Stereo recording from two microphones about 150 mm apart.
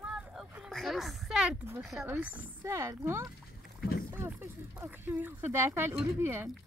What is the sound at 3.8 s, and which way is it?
Rowboat, 90° left.